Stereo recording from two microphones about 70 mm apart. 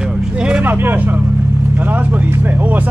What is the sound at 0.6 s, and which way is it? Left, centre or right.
Speech, right.